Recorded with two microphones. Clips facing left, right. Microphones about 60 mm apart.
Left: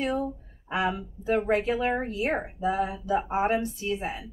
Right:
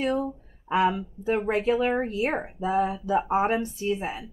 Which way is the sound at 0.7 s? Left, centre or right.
Right.